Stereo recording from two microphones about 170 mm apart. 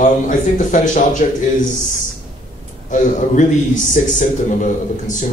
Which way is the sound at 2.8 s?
50° left (ahead or behind).